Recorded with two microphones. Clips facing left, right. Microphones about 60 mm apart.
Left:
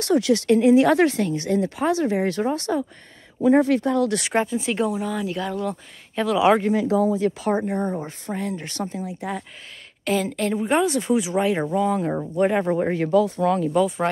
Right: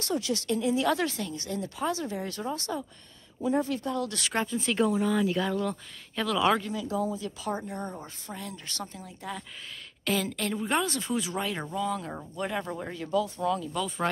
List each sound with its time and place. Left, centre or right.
0.0 s speech: left
0.7 s speech: left
3.4 s speech: left
4.2 s speech: centre
6.7 s speech: left
7.7 s speech: left
13.7 s speech: centre